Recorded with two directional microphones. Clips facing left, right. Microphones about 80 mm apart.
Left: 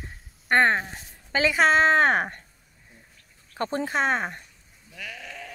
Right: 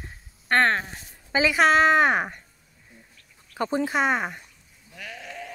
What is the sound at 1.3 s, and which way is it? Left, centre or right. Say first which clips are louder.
Speech: right 1 dB; centre.